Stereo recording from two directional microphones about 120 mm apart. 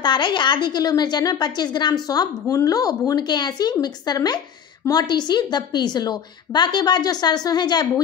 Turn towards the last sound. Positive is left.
turn(degrees=35)  # may be behind; listen again after turning